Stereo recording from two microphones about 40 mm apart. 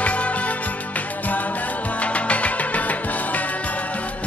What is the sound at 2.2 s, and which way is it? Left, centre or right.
Music, left.